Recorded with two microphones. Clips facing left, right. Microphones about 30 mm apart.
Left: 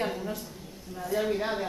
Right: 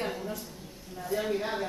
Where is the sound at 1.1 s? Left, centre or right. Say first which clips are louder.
Left 2 dB; centre.